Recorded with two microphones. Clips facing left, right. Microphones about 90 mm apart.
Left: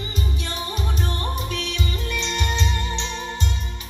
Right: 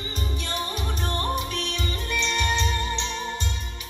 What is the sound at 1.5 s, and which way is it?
Music, 40° right (ahead or behind).